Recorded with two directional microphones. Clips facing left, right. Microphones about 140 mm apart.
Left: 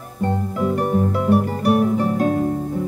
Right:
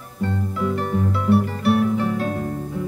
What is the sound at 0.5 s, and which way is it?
Music, 45° left (ahead or behind).